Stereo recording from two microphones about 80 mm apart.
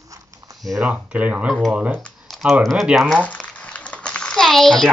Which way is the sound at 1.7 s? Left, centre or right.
Centre.